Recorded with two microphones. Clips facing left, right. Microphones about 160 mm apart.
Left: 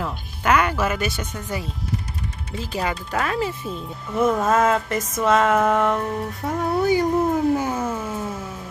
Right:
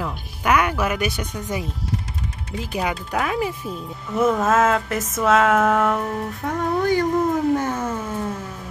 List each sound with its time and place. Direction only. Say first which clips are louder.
0.0 s speech: even; 10° right (ahead or behind)
2.5 s speech: right 1 dB; 15° right (ahead or behind)
4.3 s music: right 1 dB; centre (ahead or behind)
7.5 s a sound: even; 10° left (ahead or behind)